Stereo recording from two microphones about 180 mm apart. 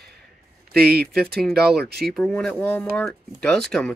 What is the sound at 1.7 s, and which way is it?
Speech, 65° right (ahead or behind).